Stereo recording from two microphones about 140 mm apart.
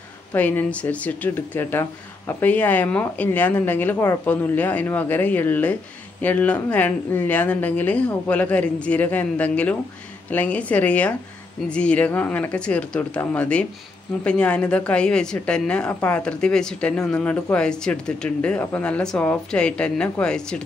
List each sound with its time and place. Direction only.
0.3 s a woman's voice: 10° left (ahead or behind)